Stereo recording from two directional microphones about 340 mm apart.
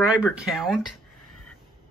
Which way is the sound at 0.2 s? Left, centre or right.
Centre.